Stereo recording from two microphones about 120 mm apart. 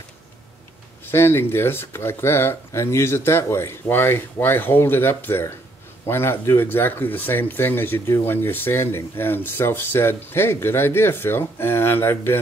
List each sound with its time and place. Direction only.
1.1 s speech: 20° left (ahead or behind)